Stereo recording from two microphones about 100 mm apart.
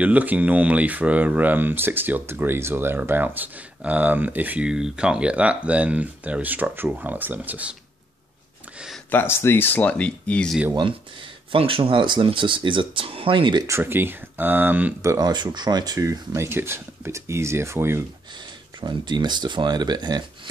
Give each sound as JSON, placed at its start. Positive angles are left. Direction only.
{"t": 0.0, "sound": "speech", "side_deg": -15}
{"t": 9.1, "sound": "speech", "side_deg": 25}
{"t": 10.7, "sound": "speech", "side_deg": -50}
{"t": 13.7, "sound": "speech", "side_deg": -25}
{"t": 15.0, "sound": "speech", "side_deg": -35}
{"t": 18.4, "sound": "speech", "side_deg": -50}